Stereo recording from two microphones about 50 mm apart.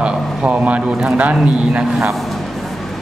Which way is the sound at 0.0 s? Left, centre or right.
Right.